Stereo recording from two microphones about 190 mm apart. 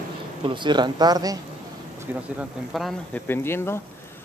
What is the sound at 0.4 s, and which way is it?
Speech, 25° right (ahead or behind).